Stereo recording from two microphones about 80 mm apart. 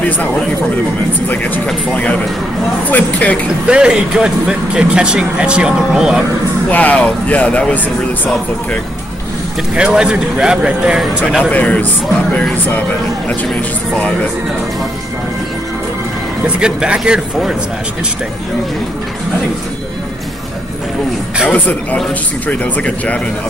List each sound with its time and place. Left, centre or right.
1.3 s speech: left
2.9 s speech: centre
3.6 s speech: centre
6.7 s speech: centre
9.8 s speech: centre
11.5 s speech: centre
16.4 s speech: centre
22.5 s speech: centre